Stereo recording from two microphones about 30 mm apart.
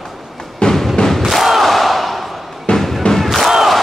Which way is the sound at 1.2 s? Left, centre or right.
Centre.